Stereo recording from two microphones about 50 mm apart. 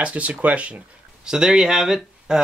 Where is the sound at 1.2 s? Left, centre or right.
Centre.